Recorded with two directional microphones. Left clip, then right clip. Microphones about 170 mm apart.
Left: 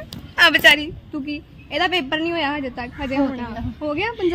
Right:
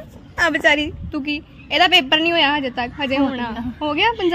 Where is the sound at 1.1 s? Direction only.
75° right (ahead or behind).